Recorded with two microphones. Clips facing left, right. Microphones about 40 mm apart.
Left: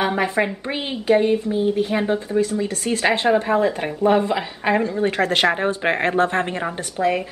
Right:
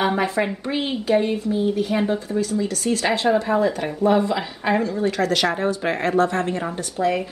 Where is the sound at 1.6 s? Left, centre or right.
Left.